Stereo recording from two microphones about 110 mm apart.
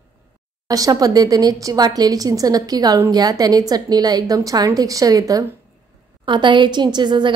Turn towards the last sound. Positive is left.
turn(degrees=-45)  # may be behind; listen again after turning